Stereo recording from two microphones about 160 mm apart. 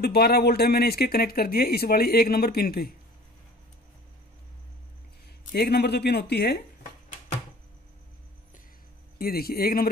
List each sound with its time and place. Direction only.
0.0 s speech: 80° left
5.5 s speech: 90° left
9.2 s speech: 70° left (ahead or behind)